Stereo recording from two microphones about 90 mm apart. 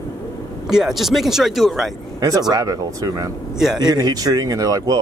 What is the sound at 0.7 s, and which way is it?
Speech, 5° right (ahead or behind).